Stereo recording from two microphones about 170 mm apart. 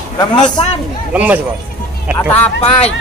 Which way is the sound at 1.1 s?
10° right (ahead or behind).